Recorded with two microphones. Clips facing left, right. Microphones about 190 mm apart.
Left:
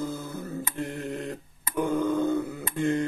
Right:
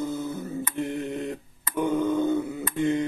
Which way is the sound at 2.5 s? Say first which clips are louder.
Right 3 dB; 20° right (ahead or behind).